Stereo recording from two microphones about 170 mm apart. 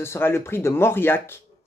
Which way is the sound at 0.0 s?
15° left (ahead or behind).